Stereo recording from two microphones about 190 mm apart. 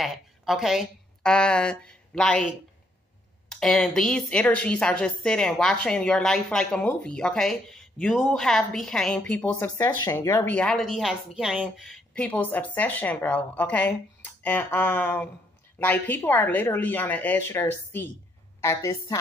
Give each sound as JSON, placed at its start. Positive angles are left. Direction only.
{"t": 0.0, "sound": "a woman's voice", "side_deg": 0}